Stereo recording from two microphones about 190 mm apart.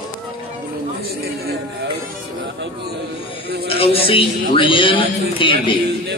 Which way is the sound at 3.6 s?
30° left (ahead or behind).